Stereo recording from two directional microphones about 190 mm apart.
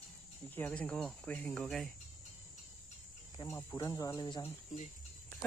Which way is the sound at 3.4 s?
15° left (ahead or behind).